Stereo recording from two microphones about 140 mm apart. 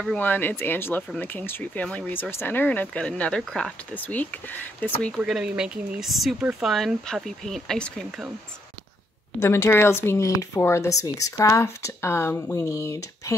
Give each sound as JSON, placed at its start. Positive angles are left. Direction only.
{"t": 0.2, "sound": "speech", "side_deg": 15}
{"t": 5.1, "sound": "speech", "side_deg": -5}
{"t": 9.4, "sound": "speech", "side_deg": 20}